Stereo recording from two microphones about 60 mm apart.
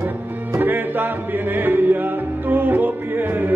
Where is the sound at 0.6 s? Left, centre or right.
Right.